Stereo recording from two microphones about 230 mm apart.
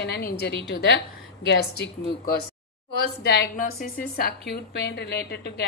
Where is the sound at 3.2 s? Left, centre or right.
Left.